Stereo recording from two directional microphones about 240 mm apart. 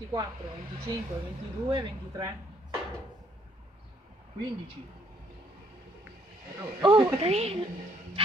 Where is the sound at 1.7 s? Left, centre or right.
Centre.